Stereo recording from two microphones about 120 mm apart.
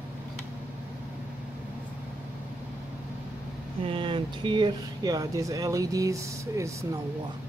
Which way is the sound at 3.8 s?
45° right (ahead or behind).